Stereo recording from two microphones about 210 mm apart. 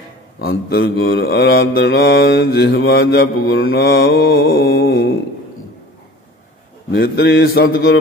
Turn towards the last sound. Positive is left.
turn(degrees=55)  # may be behind; listen again after turning